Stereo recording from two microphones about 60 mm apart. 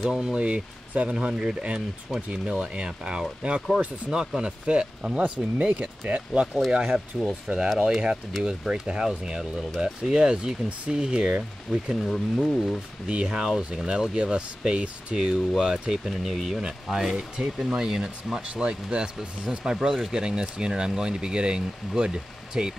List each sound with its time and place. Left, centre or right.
0.0 s speech: centre
6.7 s speech: centre
11.7 s speech: centre